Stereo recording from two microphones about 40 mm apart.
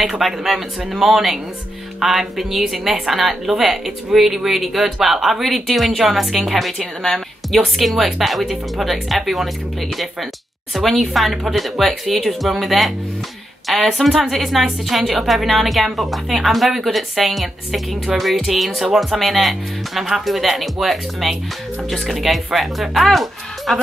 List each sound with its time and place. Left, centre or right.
0.0 s a woman's voice: centre
10.7 s a woman's voice: centre